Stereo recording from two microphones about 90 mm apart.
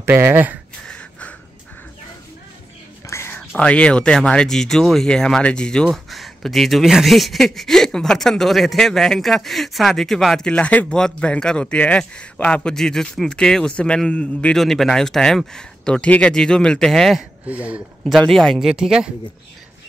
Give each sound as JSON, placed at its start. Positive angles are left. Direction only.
{"t": 0.0, "sound": "speech", "side_deg": -25}
{"t": 0.8, "sound": "gasp", "side_deg": 10}
{"t": 3.1, "sound": "a sound", "side_deg": 30}
{"t": 3.3, "sound": "speech", "side_deg": 15}
{"t": 17.5, "sound": "speech", "side_deg": -15}
{"t": 18.0, "sound": "speech", "side_deg": 5}